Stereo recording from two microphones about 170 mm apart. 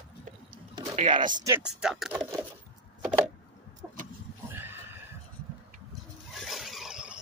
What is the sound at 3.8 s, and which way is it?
Vehicle, 10° right (ahead or behind).